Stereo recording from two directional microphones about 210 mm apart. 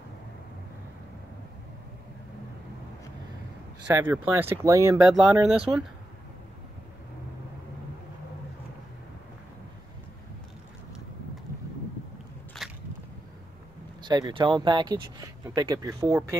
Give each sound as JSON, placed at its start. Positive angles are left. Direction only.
{"t": 3.8, "sound": "speech", "side_deg": -10}
{"t": 5.1, "sound": "speech", "side_deg": 0}
{"t": 12.6, "sound": "a sound", "side_deg": 0}
{"t": 14.0, "sound": "speech", "side_deg": -20}